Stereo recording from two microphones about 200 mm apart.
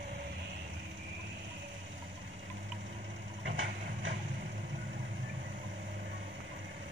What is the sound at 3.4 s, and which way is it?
Vehicle, 70° right (ahead or behind).